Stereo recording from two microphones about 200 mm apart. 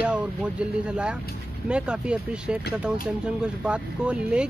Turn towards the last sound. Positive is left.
turn(degrees=-5)  # may be behind; listen again after turning